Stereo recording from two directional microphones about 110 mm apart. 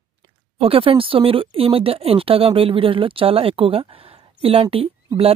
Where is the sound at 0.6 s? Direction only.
55° right (ahead or behind).